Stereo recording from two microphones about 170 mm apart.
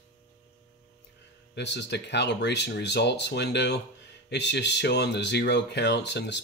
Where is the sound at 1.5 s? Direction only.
90° left.